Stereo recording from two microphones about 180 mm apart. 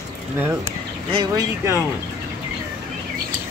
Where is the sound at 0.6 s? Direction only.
30° right (ahead or behind).